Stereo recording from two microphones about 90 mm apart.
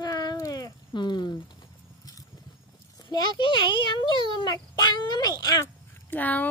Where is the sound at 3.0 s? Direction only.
60° left (ahead or behind).